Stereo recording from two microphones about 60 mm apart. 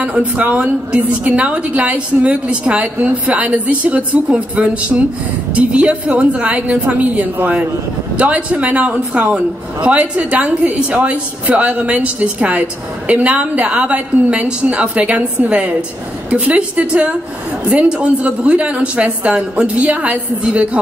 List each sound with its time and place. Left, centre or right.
0.0 s a man's voice: centre